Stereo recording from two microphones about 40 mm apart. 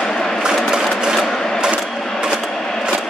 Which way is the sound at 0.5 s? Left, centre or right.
Centre.